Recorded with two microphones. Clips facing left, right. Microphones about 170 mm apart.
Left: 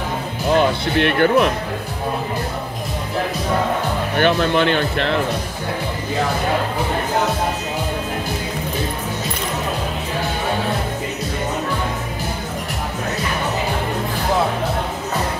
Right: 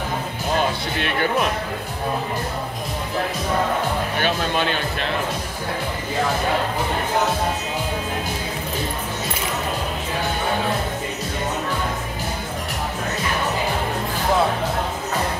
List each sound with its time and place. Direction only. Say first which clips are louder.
0.6 s speech: left 7 dB; 60° left (ahead or behind)
4.2 s speech: left 8 dB; 65° left (ahead or behind)